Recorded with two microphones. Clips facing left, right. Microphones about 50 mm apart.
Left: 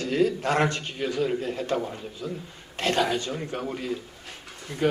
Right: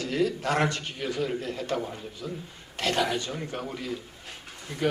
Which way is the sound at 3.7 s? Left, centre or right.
Left.